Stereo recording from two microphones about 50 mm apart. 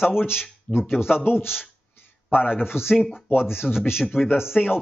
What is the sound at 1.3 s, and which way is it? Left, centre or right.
Speech, left.